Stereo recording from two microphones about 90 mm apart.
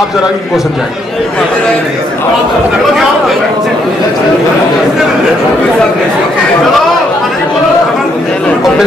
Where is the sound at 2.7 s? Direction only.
Centre (ahead or behind).